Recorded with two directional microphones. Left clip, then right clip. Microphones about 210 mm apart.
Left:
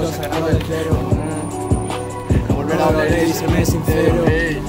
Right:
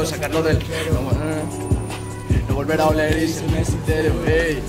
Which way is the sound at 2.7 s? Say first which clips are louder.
Left 1 dB; centre (ahead or behind).